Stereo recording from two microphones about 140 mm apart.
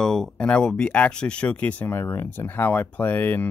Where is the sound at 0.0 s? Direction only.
5° left (ahead or behind).